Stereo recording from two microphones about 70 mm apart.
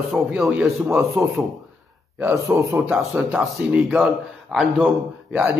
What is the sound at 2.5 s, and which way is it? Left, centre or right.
Speech, centre.